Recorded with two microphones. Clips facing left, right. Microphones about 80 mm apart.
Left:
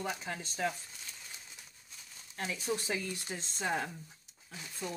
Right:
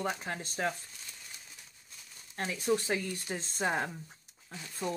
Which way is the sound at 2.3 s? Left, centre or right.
Right.